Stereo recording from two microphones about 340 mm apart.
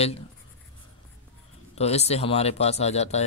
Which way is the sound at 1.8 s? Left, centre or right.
Centre.